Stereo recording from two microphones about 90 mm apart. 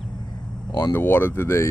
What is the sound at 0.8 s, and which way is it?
Speech, 25° left (ahead or behind).